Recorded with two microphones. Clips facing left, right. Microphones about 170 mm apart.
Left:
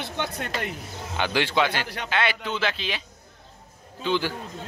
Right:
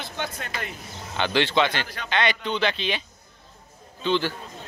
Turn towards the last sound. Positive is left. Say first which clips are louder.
# right 1 dB
turn(degrees=10)  # may be behind; listen again after turning